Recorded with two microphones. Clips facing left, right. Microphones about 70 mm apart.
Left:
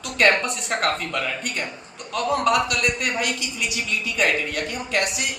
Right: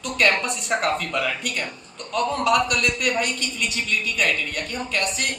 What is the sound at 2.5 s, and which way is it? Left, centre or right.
Speech, left.